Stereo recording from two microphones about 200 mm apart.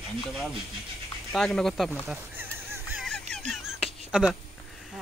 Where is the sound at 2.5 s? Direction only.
10° right (ahead or behind).